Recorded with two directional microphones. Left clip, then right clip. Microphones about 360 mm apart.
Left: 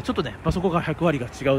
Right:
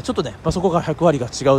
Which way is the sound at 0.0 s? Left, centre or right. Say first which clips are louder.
Right 4 dB; centre.